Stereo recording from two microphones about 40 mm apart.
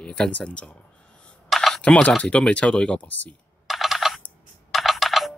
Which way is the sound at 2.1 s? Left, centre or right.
Left.